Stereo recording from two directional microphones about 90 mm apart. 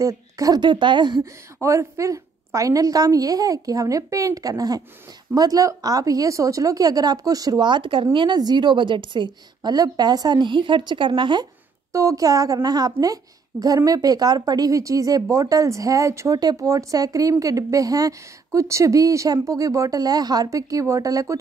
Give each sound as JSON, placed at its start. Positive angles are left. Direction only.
{"t": 0.0, "sound": "speech", "side_deg": -40}
{"t": 0.6, "sound": "a woman's voice", "side_deg": -60}
{"t": 1.2, "sound": "speech", "side_deg": -35}
{"t": 8.4, "sound": "a woman's voice", "side_deg": -55}
{"t": 11.9, "sound": "speech", "side_deg": -35}